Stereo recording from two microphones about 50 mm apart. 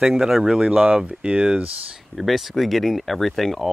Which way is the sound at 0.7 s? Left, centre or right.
Right.